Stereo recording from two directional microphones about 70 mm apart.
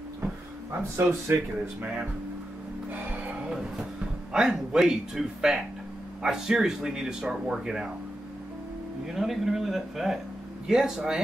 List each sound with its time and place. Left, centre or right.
0.7 s speech: right
3.4 s a sound: centre
4.3 s speech: centre
9.1 s speech: centre